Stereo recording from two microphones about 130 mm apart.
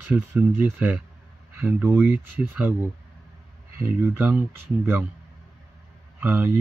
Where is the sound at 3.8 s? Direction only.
15° right (ahead or behind).